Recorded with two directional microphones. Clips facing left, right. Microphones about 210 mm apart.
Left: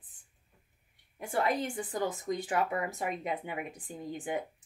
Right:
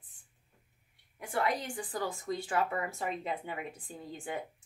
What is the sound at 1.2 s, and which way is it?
A woman's voice, 25° left (ahead or behind).